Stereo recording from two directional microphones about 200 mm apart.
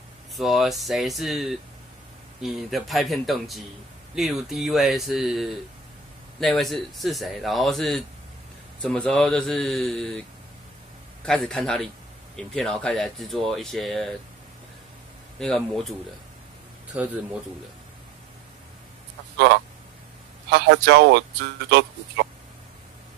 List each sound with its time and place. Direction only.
0.4 s speech: centre (ahead or behind)
11.2 s speech: 5° left (ahead or behind)
15.3 s speech: 5° left (ahead or behind)
16.9 s speech: 5° right (ahead or behind)
19.3 s speech: 60° right (ahead or behind)